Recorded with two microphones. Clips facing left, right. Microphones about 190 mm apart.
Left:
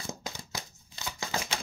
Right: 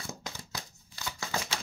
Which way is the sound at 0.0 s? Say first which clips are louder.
Left 2 dB; 20° left (ahead or behind).